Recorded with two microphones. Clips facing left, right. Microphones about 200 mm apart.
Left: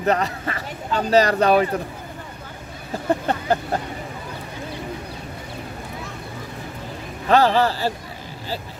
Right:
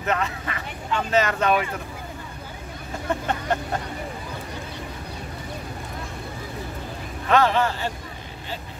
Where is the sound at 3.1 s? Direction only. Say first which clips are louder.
Left 5 dB; 35° left (ahead or behind).